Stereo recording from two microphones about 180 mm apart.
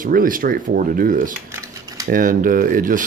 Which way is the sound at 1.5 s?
20° right (ahead or behind).